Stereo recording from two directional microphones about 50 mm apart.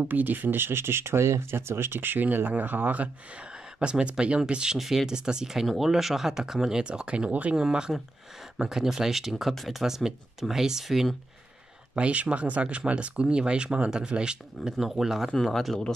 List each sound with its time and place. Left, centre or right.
0.0 s speech: right
3.8 s speech: centre
4.7 s speech: centre
6.8 s speech: centre
11.9 s speech: right
14.7 s speech: centre
15.4 s speech: centre